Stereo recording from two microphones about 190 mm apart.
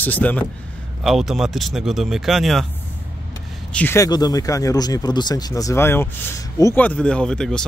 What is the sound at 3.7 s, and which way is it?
Speech, 15° left (ahead or behind).